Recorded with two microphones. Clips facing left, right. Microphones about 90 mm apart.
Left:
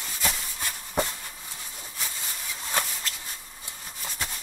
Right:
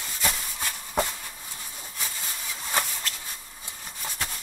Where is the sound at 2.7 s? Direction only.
Centre (ahead or behind).